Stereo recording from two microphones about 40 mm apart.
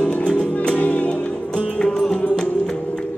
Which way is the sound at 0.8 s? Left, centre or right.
Left.